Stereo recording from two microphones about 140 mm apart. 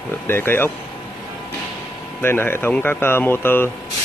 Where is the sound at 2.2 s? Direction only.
15° left (ahead or behind).